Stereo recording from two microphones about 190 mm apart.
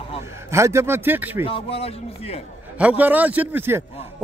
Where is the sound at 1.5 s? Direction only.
30° left (ahead or behind).